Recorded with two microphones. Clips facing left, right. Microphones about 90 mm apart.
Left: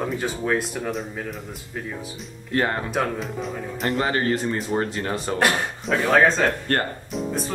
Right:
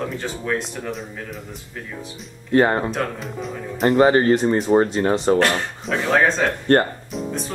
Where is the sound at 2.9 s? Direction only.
5° left (ahead or behind).